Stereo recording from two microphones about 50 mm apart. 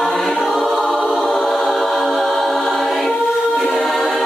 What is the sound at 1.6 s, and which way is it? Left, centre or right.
Choir, centre.